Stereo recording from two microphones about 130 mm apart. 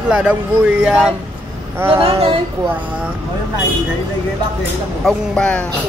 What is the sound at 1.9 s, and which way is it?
Speech, 45° right (ahead or behind).